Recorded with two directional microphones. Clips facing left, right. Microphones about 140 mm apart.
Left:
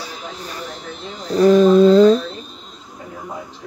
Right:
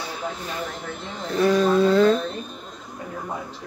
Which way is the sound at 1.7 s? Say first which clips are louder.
Left 6 dB; 20° left (ahead or behind).